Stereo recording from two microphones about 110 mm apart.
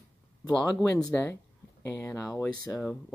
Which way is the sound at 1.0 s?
15° left (ahead or behind).